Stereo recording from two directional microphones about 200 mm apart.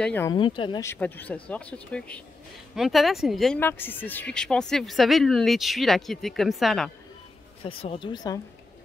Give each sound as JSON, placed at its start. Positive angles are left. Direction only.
{"t": 0.0, "sound": "speech", "side_deg": 10}
{"t": 0.3, "sound": "speech", "side_deg": 25}
{"t": 0.9, "sound": "speech", "side_deg": 10}
{"t": 7.6, "sound": "speech", "side_deg": 25}